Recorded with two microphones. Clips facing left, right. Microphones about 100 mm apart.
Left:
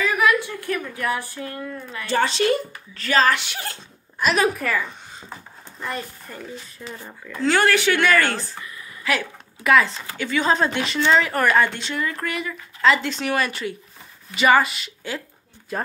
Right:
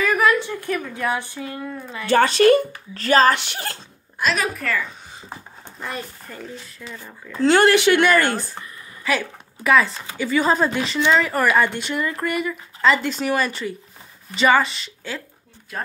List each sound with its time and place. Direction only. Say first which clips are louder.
0.2 s a sound: left 1 dB; 30° right (ahead or behind)
0.6 s speech: right 1 dB; 20° right (ahead or behind)
2.0 s speech: right 6 dB; 55° right (ahead or behind)
3.0 s speech: right 3 dB; 35° right (ahead or behind)
4.3 s a woman's voice: left 3 dB; 15° left (ahead or behind)
5.3 s a sound: right 2 dB; 10° right (ahead or behind)
7.7 s speech: right 3 dB; 20° right (ahead or behind)
9.0 s a woman's voice: right 1 dB; centre (ahead or behind)